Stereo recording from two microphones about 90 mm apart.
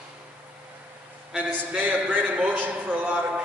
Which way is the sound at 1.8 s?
20° right (ahead or behind).